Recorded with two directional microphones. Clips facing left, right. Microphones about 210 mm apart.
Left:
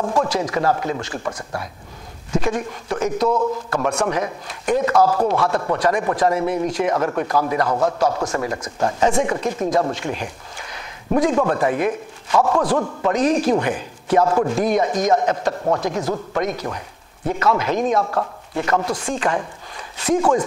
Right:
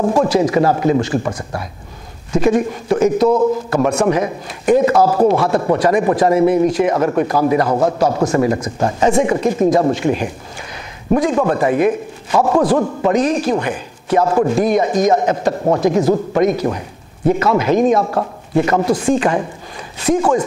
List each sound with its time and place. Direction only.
0.3 s speech: 5° right (ahead or behind)
8.1 s speech: 25° right (ahead or behind)
8.4 s speech: 10° right (ahead or behind)
8.7 s speech: 20° right (ahead or behind)
9.1 s speech: 5° right (ahead or behind)